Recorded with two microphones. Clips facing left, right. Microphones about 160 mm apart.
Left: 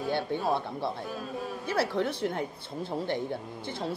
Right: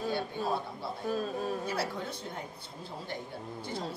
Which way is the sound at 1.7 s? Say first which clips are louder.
Left 6 dB; 65° left (ahead or behind).